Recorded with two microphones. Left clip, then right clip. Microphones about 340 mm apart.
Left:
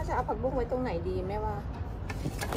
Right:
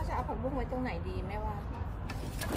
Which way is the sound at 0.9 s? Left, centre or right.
Centre.